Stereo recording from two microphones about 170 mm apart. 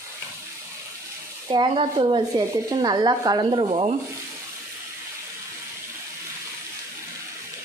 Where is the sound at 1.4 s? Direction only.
25° right (ahead or behind).